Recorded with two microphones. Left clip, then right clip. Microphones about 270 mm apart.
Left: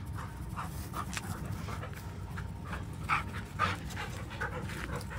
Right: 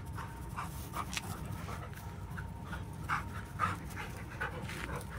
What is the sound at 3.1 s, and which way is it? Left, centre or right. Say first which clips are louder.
Dog: left 4 dB; left.